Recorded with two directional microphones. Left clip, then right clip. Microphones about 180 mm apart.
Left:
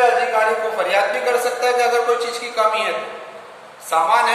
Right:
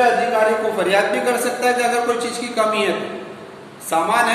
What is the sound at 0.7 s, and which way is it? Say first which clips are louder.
A man's voice: right 1 dB; 20° right (ahead or behind).